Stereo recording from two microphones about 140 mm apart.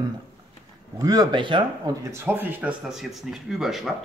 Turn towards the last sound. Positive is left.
turn(degrees=0)  # may be behind; listen again after turning